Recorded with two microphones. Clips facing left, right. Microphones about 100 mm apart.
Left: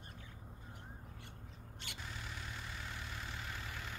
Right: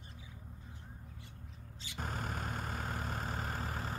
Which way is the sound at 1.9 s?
45° right (ahead or behind).